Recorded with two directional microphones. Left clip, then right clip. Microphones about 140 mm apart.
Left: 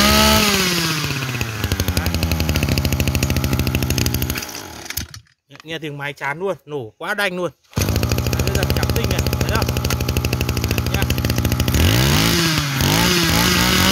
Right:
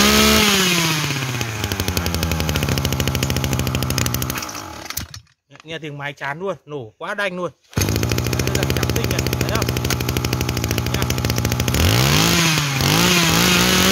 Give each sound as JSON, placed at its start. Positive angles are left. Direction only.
{"t": 0.0, "sound": "chainsaw", "side_deg": -5}
{"t": 6.0, "sound": "speech", "side_deg": 75}
{"t": 7.7, "sound": "vehicle", "side_deg": -5}